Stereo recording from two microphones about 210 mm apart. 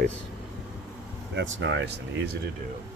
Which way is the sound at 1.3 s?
60° right (ahead or behind).